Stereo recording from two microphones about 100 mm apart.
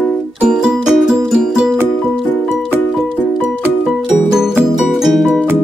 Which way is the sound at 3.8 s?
5° right (ahead or behind).